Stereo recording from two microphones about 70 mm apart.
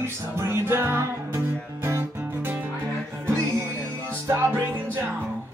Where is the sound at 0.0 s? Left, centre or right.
Right.